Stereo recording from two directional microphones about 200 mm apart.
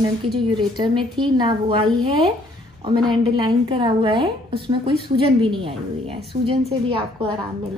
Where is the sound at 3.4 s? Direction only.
25° right (ahead or behind).